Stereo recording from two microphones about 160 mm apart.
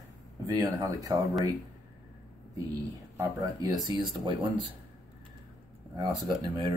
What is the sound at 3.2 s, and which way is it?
Speech, 20° right (ahead or behind).